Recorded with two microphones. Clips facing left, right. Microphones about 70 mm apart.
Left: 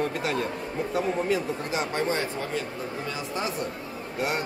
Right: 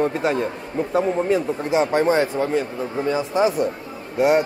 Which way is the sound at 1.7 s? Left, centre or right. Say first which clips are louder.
Right 11 dB; right.